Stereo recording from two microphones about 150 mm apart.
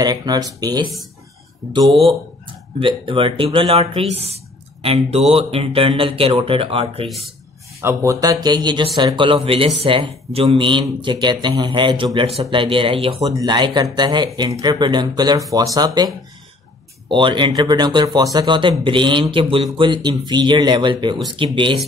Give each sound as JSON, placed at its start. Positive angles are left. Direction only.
{"t": 0.0, "sound": "a man's voice", "side_deg": -25}
{"t": 7.8, "sound": "speech", "side_deg": -20}
{"t": 13.3, "sound": "a man's voice", "side_deg": -25}
{"t": 17.1, "sound": "a man's voice", "side_deg": -30}